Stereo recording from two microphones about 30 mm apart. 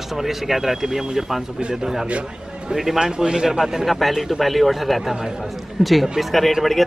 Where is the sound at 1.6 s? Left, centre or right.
Right.